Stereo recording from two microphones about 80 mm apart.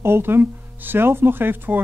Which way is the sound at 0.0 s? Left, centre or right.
Right.